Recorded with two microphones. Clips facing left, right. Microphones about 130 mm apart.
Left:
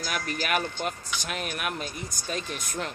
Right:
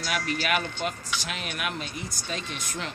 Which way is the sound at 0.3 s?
45° left (ahead or behind).